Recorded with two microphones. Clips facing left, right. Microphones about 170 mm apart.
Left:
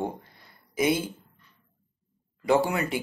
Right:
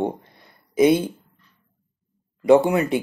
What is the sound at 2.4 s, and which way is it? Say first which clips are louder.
Speech: right 8 dB; 25° right (ahead or behind).